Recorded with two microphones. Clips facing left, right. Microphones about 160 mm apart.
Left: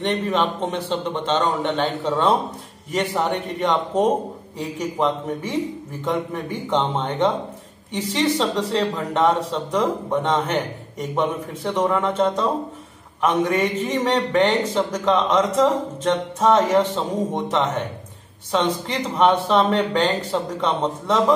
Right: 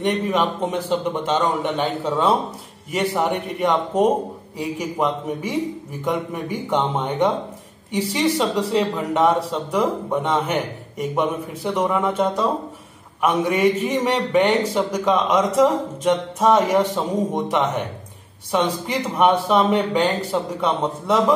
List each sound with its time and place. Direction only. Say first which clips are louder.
0.0 s a man's voice: right 1 dB; 10° right (ahead or behind)